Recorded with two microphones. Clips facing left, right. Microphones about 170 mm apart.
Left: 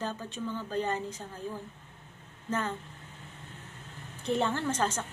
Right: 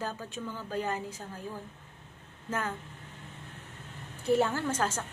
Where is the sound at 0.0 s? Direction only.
10° right (ahead or behind).